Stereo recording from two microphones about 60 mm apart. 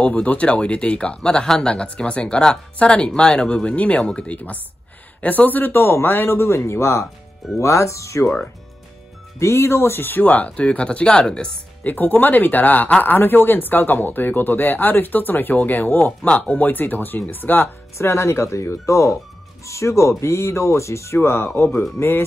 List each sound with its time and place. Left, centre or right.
0.0 s speech: left
5.2 s speech: left
9.4 s speech: left; by 11.5 s centre
11.8 s speech: left
17.9 s speech: left